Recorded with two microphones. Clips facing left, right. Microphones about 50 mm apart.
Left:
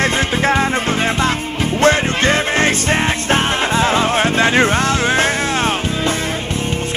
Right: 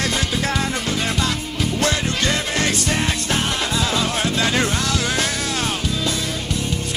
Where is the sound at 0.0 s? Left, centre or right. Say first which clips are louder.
Left 6 dB; left.